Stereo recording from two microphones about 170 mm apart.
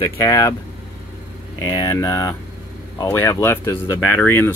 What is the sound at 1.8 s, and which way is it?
Speech, 20° left (ahead or behind).